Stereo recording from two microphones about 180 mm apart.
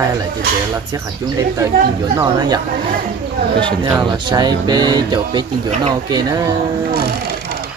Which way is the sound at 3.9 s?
20° right (ahead or behind).